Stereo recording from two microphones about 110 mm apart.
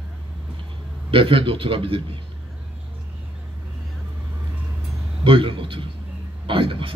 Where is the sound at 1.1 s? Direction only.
55° right (ahead or behind).